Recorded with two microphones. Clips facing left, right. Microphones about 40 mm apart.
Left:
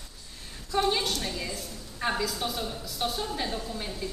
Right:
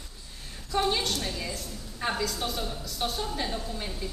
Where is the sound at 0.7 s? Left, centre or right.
Centre.